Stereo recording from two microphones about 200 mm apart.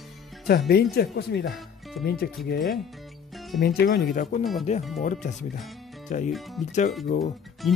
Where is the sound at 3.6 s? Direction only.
50° left (ahead or behind).